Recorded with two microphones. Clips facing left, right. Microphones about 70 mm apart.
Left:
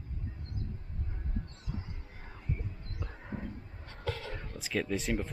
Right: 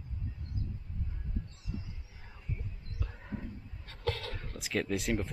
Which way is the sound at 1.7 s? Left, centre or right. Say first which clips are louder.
Even; left.